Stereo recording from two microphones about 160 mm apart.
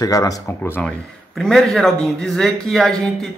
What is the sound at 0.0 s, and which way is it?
Speech, 20° left (ahead or behind).